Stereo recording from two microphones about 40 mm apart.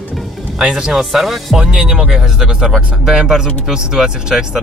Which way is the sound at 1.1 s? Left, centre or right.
Centre.